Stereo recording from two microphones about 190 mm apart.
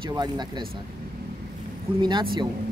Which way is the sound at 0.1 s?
20° right (ahead or behind).